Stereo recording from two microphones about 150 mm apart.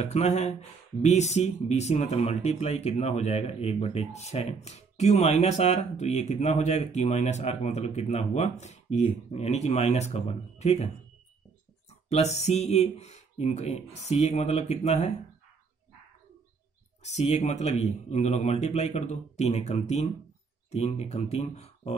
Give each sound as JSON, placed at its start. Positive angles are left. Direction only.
{"t": 0.1, "sound": "speech", "side_deg": 50}
{"t": 12.1, "sound": "speech", "side_deg": 45}
{"t": 17.0, "sound": "speech", "side_deg": 50}